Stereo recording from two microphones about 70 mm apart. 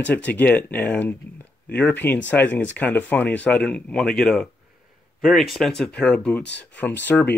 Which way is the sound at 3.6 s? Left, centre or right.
Centre.